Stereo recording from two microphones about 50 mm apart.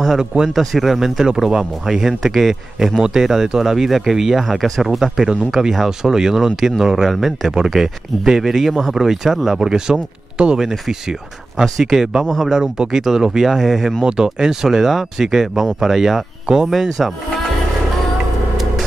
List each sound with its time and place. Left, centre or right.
0.2 s speech: centre
0.5 s speech: centre
12.5 s speech: centre
14.0 s speech: centre